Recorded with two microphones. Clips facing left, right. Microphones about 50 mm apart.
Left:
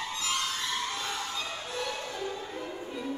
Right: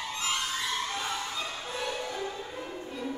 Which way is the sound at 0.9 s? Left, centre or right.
Centre.